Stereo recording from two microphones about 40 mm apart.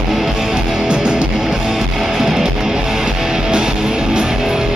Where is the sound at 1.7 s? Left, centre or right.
Centre.